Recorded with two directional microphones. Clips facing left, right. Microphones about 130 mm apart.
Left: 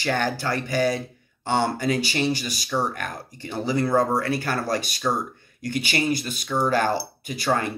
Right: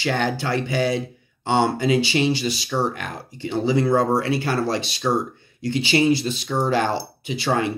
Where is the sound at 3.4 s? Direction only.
20° right (ahead or behind).